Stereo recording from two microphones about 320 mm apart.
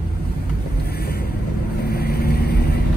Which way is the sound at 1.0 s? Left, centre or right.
Left.